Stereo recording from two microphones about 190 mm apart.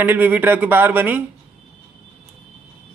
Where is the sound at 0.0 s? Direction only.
10° right (ahead or behind).